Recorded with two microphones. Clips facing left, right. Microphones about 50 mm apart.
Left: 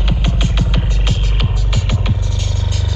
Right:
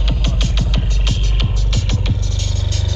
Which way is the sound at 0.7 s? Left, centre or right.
Centre.